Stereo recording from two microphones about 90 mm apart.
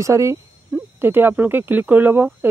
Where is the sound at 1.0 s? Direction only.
25° right (ahead or behind).